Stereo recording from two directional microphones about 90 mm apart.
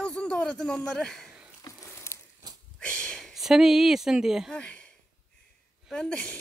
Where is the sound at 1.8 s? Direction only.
30° left (ahead or behind).